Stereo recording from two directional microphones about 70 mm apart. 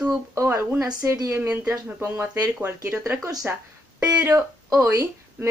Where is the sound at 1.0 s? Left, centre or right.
Right.